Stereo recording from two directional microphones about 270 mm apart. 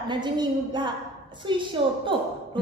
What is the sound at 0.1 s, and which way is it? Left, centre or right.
A woman's voice, centre.